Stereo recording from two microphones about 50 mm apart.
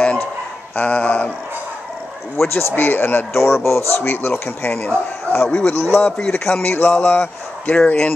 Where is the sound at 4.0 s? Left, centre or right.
Left.